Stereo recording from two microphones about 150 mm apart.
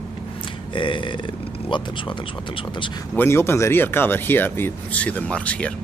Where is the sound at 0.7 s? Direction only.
35° left (ahead or behind).